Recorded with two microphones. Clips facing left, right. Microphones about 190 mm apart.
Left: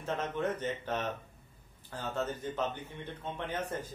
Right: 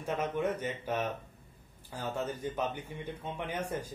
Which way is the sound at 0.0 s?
10° right (ahead or behind).